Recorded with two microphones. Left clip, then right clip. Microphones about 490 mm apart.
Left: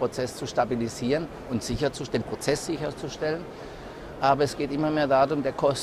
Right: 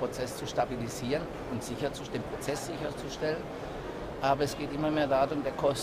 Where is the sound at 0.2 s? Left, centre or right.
Left.